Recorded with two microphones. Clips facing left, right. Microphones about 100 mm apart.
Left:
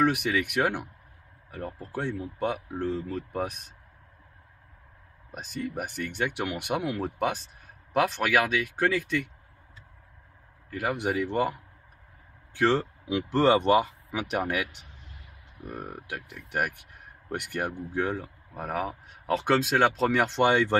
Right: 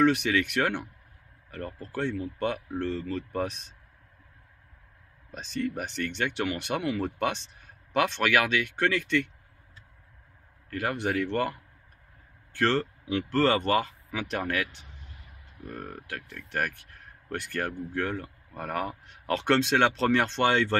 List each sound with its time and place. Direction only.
0.0 s speech: 10° left (ahead or behind)
5.3 s speech: 10° left (ahead or behind)
10.7 s speech: 10° left (ahead or behind)
18.2 s speech: 5° left (ahead or behind)